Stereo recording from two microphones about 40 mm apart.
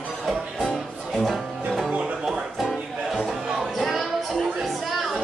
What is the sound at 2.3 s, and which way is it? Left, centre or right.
Music, centre.